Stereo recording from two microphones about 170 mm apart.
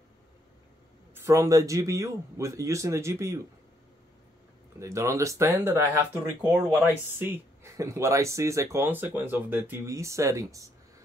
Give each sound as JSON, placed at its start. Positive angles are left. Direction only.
{"t": 1.1, "sound": "speech", "side_deg": -20}
{"t": 4.7, "sound": "speech", "side_deg": -15}